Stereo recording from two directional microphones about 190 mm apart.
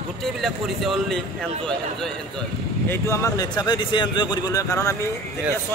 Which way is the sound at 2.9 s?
15° left (ahead or behind).